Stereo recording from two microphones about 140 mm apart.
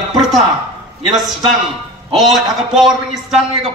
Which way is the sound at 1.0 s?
Centre (ahead or behind).